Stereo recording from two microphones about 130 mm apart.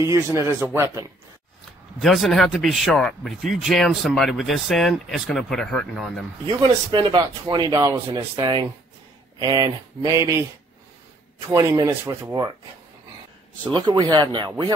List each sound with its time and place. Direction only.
0.0 s speech: 20° right (ahead or behind)
2.0 s speech: centre (ahead or behind)
6.9 s speech: 40° right (ahead or behind)
11.4 s speech: 25° right (ahead or behind)
13.7 s speech: 35° right (ahead or behind)